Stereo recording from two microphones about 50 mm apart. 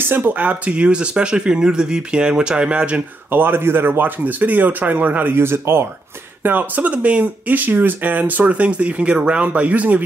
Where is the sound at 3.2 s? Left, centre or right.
Right.